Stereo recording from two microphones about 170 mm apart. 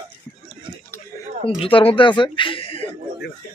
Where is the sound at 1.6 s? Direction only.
30° left (ahead or behind).